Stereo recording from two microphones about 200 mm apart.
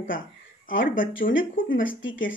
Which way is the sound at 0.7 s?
45° left (ahead or behind).